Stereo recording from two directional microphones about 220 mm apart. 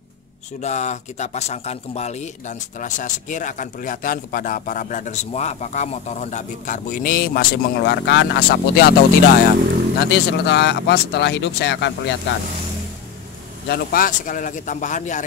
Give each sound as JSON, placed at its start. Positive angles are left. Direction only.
{"t": 0.6, "sound": "speech", "side_deg": 30}
{"t": 9.9, "sound": "speech", "side_deg": 50}
{"t": 13.7, "sound": "speech", "side_deg": 40}